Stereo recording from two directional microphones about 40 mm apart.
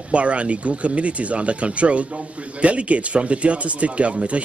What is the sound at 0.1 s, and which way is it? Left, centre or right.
Speech, right.